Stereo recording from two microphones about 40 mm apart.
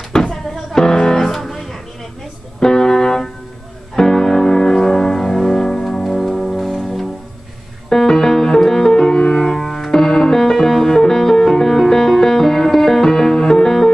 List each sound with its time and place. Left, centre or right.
0.1 s music: centre
2.6 s music: centre
6.0 s music: centre
7.9 s music: centre